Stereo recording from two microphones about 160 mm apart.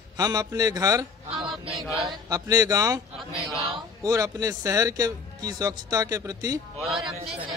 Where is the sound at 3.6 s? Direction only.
30° right (ahead or behind).